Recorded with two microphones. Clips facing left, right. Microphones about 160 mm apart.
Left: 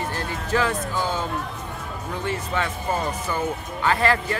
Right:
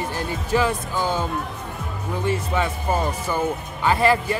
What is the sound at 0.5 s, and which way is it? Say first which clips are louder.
Speech: right 2 dB; 15° right (ahead or behind).